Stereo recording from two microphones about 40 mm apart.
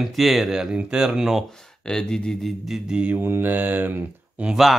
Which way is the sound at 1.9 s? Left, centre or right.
Centre.